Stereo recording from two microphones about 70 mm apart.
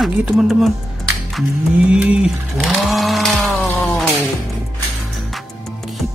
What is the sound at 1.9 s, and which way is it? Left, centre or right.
Speech, centre.